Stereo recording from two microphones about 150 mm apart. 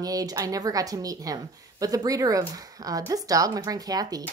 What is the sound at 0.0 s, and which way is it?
Speech, 25° right (ahead or behind).